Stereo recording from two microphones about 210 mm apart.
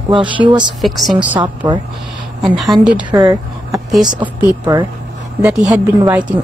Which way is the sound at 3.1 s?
15° right (ahead or behind).